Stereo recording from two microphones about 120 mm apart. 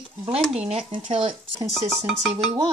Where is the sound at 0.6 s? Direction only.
55° right (ahead or behind).